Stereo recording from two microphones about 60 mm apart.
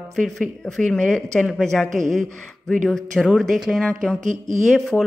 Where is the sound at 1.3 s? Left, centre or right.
Centre.